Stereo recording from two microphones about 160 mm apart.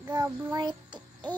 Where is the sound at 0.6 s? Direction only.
30° right (ahead or behind).